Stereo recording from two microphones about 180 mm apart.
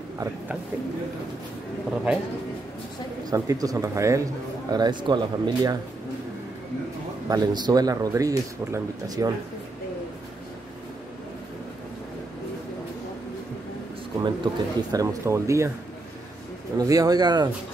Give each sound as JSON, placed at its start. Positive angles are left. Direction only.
{"t": 3.3, "sound": "speech", "side_deg": -20}
{"t": 7.2, "sound": "speech", "side_deg": -20}
{"t": 14.2, "sound": "speech", "side_deg": -20}
{"t": 16.7, "sound": "speech", "side_deg": -20}